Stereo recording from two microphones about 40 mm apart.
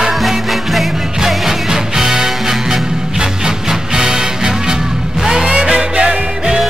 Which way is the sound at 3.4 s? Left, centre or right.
Centre.